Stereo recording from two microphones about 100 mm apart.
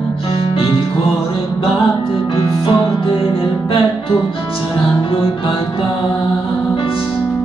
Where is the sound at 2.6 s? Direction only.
55° left (ahead or behind).